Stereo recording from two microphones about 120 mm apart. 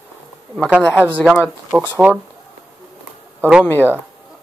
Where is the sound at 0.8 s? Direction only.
15° left (ahead or behind).